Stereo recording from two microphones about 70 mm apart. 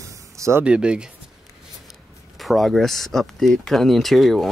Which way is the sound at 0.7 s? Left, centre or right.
Centre.